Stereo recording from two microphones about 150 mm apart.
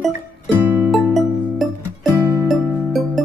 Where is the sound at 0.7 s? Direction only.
10° right (ahead or behind).